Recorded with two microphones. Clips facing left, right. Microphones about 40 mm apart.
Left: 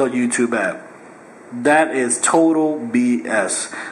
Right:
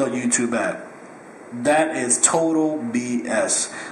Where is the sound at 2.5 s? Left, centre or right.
Centre.